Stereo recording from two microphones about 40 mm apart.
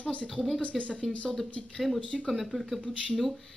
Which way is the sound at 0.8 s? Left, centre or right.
Left.